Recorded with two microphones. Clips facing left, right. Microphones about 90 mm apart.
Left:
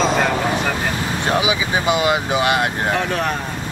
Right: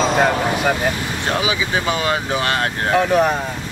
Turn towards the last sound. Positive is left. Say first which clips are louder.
# right 5 dB
turn(degrees=-10)  # may be behind; listen again after turning